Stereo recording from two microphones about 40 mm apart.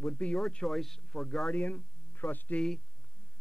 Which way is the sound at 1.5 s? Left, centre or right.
Left.